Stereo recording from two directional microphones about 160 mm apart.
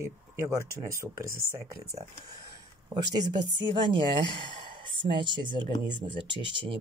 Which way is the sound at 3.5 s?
30° right (ahead or behind).